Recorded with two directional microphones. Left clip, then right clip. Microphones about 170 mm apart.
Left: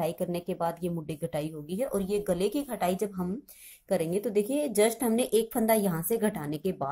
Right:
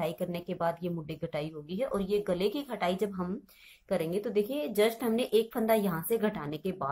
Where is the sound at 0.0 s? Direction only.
50° left (ahead or behind).